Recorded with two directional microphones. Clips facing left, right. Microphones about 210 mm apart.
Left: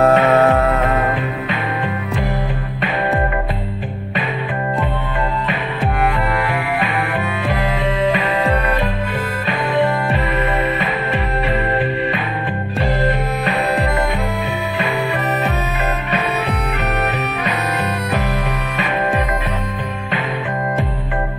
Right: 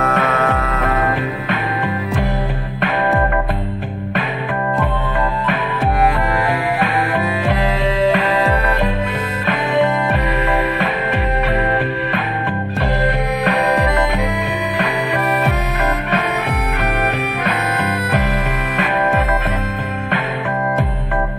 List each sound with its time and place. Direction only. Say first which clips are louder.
0.0 s music: left 6 dB; 30° left (ahead or behind)
6.0 s music: right 2 dB; 40° right (ahead or behind)